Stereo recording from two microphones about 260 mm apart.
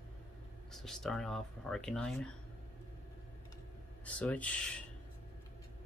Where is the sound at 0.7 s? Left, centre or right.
Centre.